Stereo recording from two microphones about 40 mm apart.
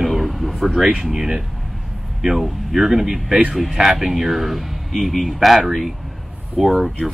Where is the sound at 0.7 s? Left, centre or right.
Centre.